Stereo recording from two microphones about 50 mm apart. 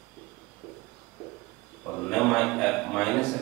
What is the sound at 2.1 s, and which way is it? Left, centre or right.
A man's voice, centre.